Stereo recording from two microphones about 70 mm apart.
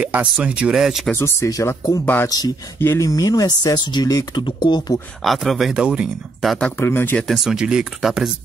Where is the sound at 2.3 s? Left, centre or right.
Left.